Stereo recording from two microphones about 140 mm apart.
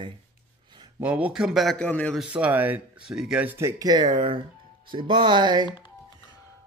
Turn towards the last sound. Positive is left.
turn(degrees=-35)  # may be behind; listen again after turning